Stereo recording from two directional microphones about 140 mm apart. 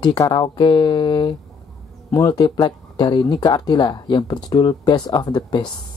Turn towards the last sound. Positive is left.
turn(degrees=30)  # may be behind; listen again after turning